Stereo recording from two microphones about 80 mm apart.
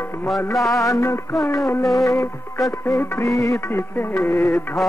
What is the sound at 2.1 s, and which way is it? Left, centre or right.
Music, left.